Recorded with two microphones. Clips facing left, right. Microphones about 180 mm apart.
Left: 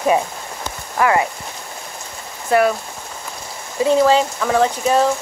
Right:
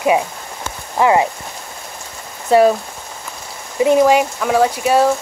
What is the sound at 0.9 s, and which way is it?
Speech, 20° right (ahead or behind).